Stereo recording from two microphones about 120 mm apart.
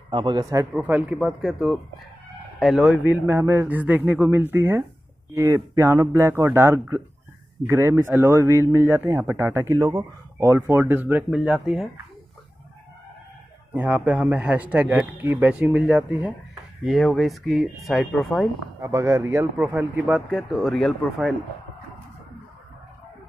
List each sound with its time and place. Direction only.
0.1 s a man's voice: 40° right (ahead or behind)
0.7 s speech: 10° right (ahead or behind)
3.3 s a man's voice: 20° right (ahead or behind)
10.8 s a man's voice: 15° right (ahead or behind)
13.7 s a man's voice: 10° right (ahead or behind)
16.8 s speech: centre (ahead or behind)
18.8 s a man's voice: 20° right (ahead or behind); by 21.4 s centre (ahead or behind)